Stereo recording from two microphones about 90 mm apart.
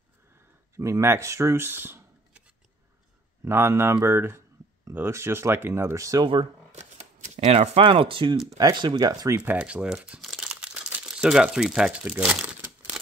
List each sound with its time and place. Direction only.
0.7 s speech: 30° right (ahead or behind)
3.4 s speech: 30° right (ahead or behind)
7.5 s speech: 85° right
8.5 s speech: 50° right (ahead or behind)
9.4 s crumpling: 15° right (ahead or behind)